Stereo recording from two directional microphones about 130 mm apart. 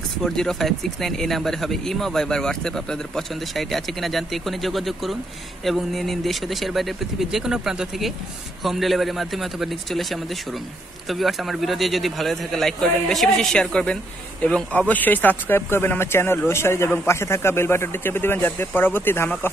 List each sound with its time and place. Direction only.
0.2 s speech: 5° left (ahead or behind)